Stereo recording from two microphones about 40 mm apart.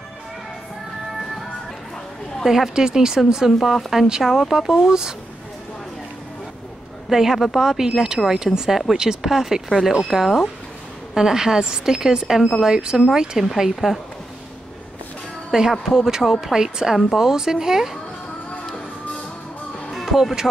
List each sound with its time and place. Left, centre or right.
2.4 s a woman's voice: centre
7.1 s a woman's voice: centre
11.1 s a woman's voice: centre
13.7 s speech: centre
15.7 s a woman's voice: centre
20.1 s speech: centre